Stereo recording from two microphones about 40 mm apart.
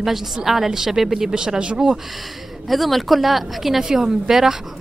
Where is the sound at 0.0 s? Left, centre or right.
Centre.